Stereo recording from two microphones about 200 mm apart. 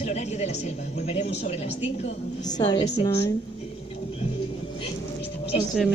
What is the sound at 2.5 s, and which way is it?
Speech, 20° left (ahead or behind).